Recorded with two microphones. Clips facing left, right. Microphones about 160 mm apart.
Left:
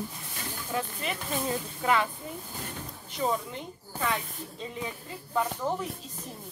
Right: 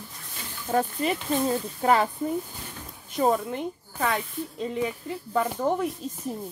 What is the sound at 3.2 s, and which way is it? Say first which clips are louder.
Speech: right 6 dB; 55° right (ahead or behind).